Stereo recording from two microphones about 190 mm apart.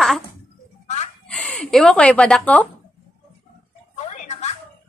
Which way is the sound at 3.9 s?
35° left (ahead or behind).